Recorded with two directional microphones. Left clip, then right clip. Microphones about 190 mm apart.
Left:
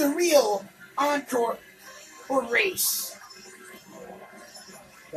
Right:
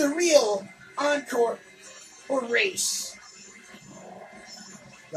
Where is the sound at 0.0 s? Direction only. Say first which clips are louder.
Right 1 dB; 20° left (ahead or behind).